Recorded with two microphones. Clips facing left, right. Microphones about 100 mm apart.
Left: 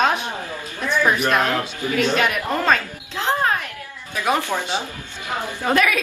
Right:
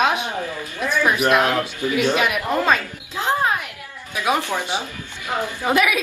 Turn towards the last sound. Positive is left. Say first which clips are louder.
# even
turn(degrees=-10)  # may be behind; listen again after turning